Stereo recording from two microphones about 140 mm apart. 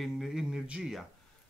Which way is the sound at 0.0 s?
Centre (ahead or behind).